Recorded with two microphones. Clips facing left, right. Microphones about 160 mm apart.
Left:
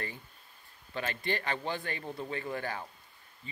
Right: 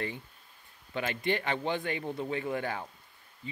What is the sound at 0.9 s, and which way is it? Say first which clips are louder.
Speech: right 3 dB; 20° right (ahead or behind).